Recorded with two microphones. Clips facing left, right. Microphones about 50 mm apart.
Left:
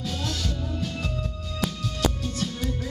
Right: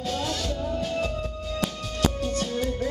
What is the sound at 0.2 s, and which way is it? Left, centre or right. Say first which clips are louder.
Music: right 3 dB; centre.